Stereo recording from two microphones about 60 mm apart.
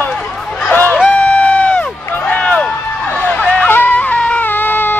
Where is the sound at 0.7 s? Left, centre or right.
Left.